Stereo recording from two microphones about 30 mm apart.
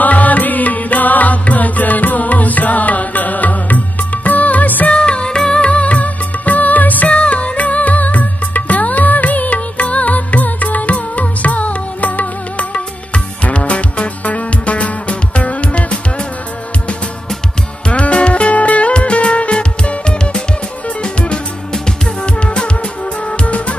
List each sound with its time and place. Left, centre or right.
0.0 s music: left
4.9 s music of bollywood: left
7.2 s music: left
12.7 s music: left
17.8 s music: left
19.5 s music: left
22.2 s music: left
23.3 s music: left